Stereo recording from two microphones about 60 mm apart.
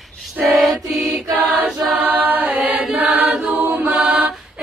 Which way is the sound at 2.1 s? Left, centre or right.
Right.